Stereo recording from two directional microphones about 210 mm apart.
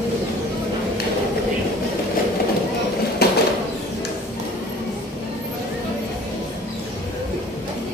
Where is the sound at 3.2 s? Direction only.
50° left (ahead or behind).